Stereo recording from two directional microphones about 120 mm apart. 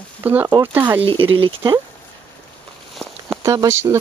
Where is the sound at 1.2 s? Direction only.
45° right (ahead or behind).